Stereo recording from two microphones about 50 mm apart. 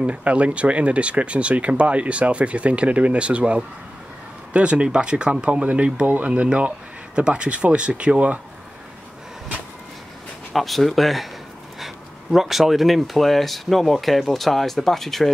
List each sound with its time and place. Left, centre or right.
0.0 s speech: right
10.5 s speech: centre